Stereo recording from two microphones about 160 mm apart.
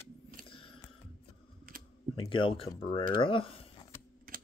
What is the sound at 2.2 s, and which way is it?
Speech, 30° left (ahead or behind).